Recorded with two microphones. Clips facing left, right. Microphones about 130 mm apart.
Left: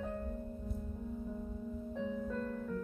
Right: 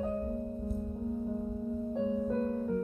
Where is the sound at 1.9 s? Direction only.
30° right (ahead or behind).